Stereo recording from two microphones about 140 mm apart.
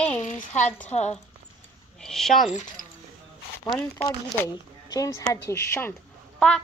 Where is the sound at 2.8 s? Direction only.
75° left (ahead or behind).